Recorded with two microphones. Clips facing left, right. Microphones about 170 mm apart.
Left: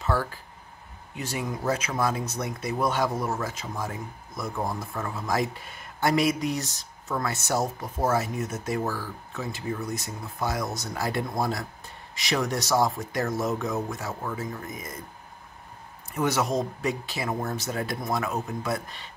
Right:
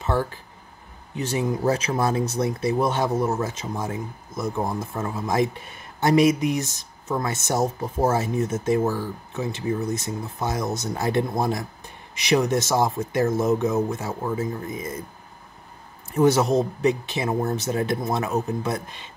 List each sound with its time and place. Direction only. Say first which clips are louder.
0.0 s speech: right 3 dB; 25° right (ahead or behind)
16.1 s speech: right 7 dB; 30° right (ahead or behind)